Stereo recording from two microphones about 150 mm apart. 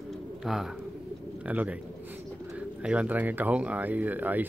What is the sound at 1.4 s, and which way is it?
Speech, 10° right (ahead or behind).